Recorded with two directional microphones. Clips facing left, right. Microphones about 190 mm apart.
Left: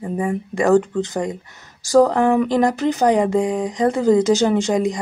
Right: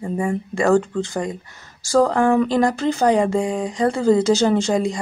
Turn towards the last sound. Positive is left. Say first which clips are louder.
# left 1 dB
turn(degrees=15)  # may be behind; listen again after turning